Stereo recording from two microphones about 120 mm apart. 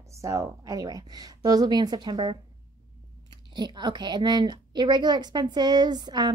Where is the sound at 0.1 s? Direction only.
25° right (ahead or behind).